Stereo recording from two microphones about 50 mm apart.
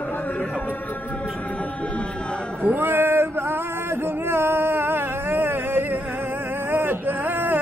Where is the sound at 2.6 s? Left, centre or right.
Right.